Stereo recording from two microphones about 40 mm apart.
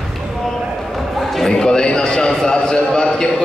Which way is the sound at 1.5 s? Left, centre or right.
Centre.